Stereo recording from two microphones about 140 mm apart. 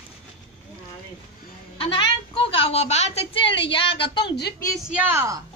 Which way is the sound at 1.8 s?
40° left (ahead or behind).